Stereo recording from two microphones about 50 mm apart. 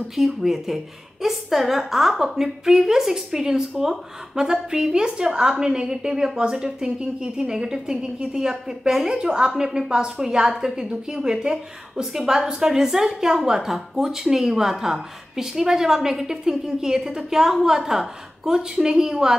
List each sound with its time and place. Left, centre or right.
0.4 s a woman's voice: centre